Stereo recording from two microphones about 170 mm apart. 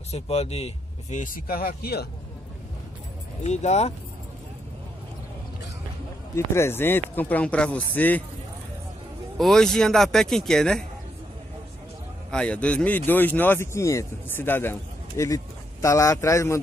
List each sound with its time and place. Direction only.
0.1 s speech: 40° left (ahead or behind); by 2.0 s 65° left (ahead or behind)
3.4 s speech: 40° left (ahead or behind)
6.3 s speech: 15° left (ahead or behind)
9.4 s a man's voice: centre (ahead or behind)
12.3 s speech: 5° left (ahead or behind)